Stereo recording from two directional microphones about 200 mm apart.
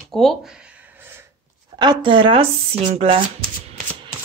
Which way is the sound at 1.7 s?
20° right (ahead or behind).